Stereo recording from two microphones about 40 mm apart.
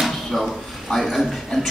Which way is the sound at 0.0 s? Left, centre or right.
Centre.